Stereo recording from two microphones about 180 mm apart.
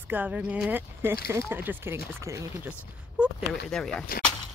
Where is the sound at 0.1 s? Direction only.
5° right (ahead or behind).